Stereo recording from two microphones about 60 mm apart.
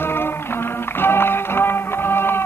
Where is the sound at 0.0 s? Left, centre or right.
Left.